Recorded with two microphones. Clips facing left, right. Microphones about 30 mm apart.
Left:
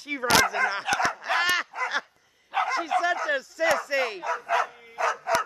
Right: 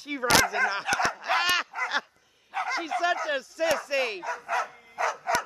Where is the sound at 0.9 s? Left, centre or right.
Centre.